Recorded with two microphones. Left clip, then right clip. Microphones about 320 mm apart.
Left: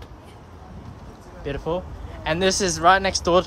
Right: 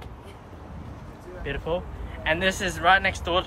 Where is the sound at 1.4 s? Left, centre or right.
Centre.